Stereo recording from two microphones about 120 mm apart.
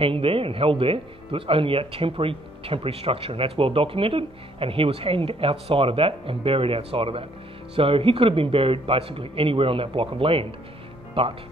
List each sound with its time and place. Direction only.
0.0 s speech: 50° right (ahead or behind)